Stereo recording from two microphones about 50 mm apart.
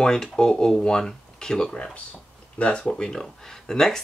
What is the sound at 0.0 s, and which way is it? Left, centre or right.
Speech, centre.